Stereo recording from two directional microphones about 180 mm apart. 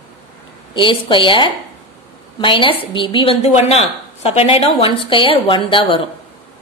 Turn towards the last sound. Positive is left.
turn(degrees=30)  # may be behind; listen again after turning